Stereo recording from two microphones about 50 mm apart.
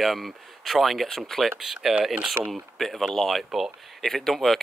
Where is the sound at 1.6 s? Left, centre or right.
Centre.